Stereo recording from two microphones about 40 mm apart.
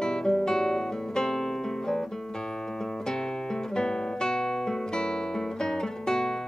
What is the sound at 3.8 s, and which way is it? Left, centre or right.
Guitar, centre.